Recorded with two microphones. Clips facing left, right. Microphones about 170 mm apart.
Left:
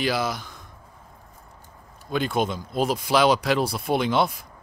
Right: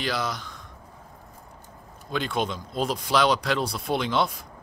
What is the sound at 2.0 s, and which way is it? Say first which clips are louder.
Speech: left 3 dB; 5° left (ahead or behind).